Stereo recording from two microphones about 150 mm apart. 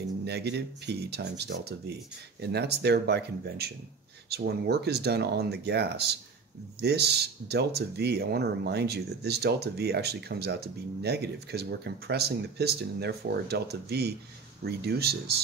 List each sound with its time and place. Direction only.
0.2 s speech: 90° right